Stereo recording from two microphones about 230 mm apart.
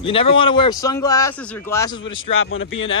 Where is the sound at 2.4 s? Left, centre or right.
Left.